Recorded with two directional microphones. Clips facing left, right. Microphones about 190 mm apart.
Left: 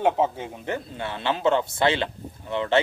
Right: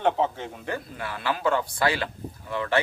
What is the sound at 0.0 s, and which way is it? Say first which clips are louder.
Speech: left 2 dB; 10° left (ahead or behind).